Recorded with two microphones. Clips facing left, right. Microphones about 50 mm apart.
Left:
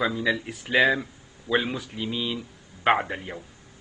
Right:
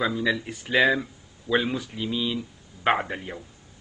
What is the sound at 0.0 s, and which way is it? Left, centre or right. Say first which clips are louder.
Speech: even; centre.